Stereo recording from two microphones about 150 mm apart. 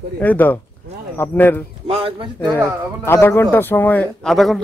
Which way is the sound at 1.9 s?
40° right (ahead or behind).